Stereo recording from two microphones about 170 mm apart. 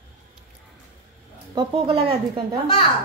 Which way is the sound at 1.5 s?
30° right (ahead or behind).